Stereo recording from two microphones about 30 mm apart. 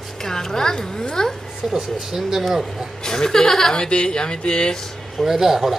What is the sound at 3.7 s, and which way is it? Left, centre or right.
Speech, left.